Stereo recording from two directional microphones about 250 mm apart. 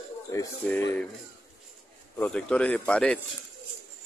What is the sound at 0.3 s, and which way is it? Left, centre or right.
Speech, centre.